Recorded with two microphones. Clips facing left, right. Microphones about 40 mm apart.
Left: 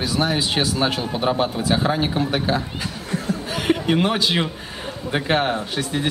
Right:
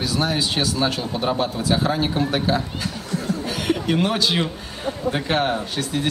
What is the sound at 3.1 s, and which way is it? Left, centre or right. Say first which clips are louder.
Chuckle: left 1 dB; centre.